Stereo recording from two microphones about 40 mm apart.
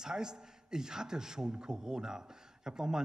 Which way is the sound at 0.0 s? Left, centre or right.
Centre.